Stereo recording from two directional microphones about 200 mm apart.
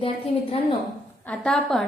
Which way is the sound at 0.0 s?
25° left (ahead or behind).